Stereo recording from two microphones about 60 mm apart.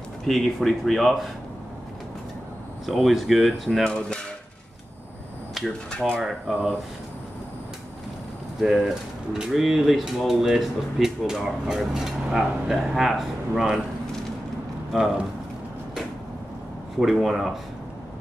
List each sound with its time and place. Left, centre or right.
0.3 s speech: centre
2.9 s speech: centre
3.8 s dishes: centre
5.9 s dishes: centre
6.5 s speech: centre
8.5 s speech: centre
14.9 s speech: centre
17.0 s speech: centre